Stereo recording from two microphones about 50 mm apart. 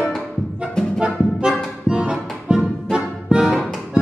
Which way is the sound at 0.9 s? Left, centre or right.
Centre.